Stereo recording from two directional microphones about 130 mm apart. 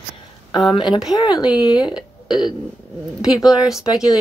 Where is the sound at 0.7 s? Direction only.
35° left (ahead or behind).